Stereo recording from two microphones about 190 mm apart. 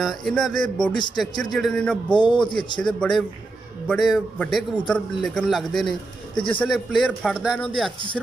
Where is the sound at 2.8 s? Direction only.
5° left (ahead or behind).